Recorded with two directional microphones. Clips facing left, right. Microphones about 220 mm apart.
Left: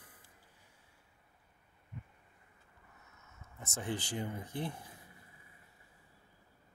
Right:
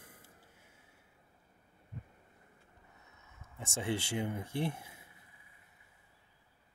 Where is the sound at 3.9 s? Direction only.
65° right (ahead or behind).